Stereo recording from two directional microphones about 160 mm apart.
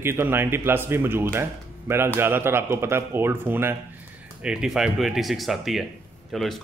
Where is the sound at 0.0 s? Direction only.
15° right (ahead or behind).